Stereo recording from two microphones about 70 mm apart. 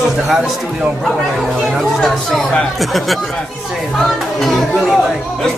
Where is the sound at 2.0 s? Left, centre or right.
Centre.